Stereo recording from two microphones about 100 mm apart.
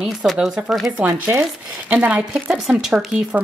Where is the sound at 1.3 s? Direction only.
15° right (ahead or behind).